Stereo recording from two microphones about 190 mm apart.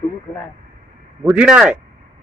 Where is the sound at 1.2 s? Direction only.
5° right (ahead or behind).